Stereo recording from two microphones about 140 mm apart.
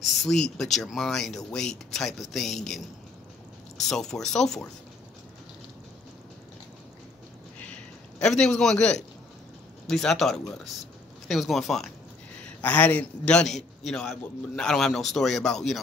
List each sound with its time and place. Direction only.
0.0 s a man's voice: centre (ahead or behind)
8.2 s a man's voice: 5° left (ahead or behind)